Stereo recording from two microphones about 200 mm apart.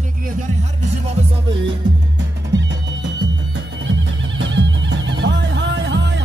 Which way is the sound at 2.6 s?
65° right (ahead or behind).